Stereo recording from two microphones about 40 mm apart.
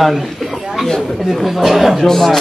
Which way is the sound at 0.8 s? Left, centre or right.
Centre.